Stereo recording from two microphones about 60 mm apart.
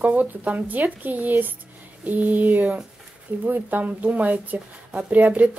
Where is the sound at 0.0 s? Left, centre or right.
Right.